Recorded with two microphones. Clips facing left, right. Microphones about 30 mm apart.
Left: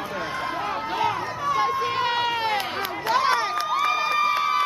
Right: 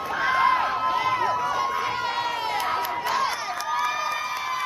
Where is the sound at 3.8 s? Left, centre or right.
Left.